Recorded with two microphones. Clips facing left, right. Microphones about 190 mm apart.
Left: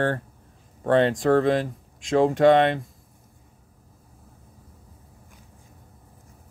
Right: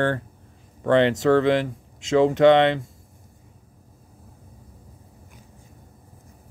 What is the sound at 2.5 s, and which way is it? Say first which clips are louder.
Speech: right 1 dB; 90° right.